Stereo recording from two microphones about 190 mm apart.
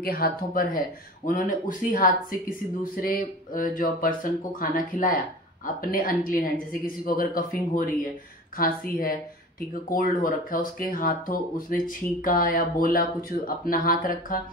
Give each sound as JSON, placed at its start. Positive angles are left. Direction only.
{"t": 0.0, "sound": "speech", "side_deg": 50}